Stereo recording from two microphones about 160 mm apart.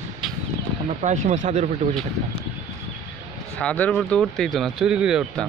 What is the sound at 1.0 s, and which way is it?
Speech, 50° right (ahead or behind).